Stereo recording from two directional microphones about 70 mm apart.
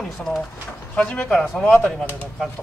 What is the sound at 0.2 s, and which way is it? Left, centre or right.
Speech, centre.